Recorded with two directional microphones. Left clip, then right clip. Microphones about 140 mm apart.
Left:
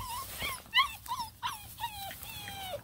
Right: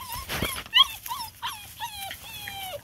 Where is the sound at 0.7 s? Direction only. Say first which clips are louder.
Right 8 dB; 35° right (ahead or behind).